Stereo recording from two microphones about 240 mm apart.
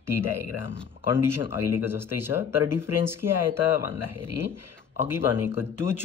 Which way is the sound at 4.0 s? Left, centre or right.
Left.